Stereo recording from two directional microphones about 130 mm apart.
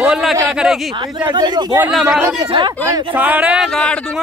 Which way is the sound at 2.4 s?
40° right (ahead or behind).